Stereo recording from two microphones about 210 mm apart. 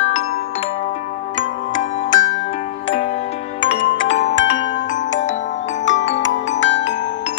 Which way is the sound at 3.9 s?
60° left (ahead or behind).